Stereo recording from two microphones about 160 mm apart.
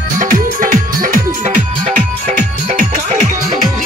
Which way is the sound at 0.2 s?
55° right (ahead or behind).